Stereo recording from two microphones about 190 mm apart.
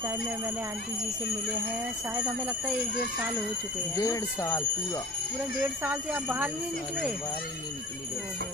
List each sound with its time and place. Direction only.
3.9 s speech: 15° left (ahead or behind)
5.9 s speech: 10° right (ahead or behind)